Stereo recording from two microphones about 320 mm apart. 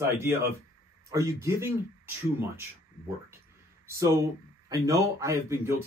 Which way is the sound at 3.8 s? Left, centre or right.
Centre.